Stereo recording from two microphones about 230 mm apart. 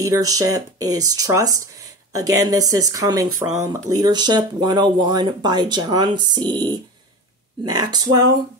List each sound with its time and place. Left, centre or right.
0.0 s speech: centre